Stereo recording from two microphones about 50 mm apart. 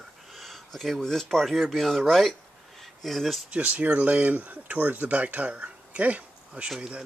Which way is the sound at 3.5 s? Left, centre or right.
Right.